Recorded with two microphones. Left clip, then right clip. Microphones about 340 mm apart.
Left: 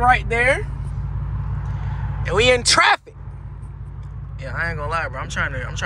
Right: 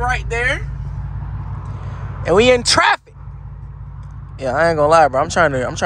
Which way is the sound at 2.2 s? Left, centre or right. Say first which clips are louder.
Right 4 dB; centre.